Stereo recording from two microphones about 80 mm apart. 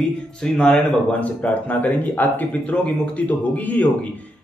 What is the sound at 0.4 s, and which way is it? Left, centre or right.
A man's voice, centre.